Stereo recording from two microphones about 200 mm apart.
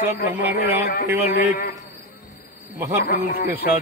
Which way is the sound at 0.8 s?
50° left (ahead or behind).